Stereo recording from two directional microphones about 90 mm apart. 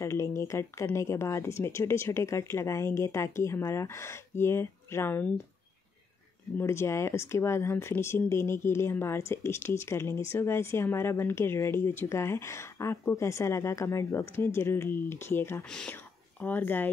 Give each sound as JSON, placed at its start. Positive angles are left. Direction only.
{"t": 0.0, "sound": "speech", "side_deg": 35}
{"t": 6.6, "sound": "speech", "side_deg": 30}